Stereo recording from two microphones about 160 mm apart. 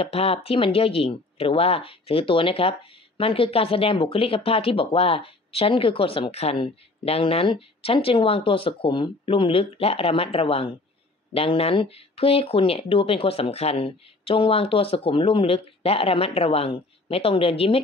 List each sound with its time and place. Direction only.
0.0 s speech: 40° left (ahead or behind)